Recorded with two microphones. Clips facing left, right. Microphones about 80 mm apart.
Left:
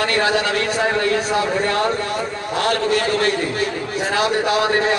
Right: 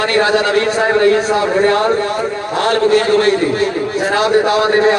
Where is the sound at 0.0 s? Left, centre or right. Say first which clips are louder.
Right 5 dB; right.